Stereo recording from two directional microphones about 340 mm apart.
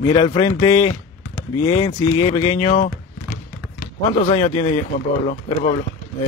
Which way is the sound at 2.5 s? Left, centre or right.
Centre.